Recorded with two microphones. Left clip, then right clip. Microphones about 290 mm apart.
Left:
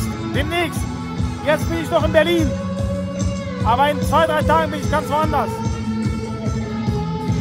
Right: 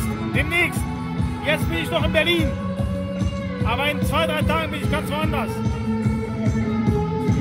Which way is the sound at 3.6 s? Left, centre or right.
Left.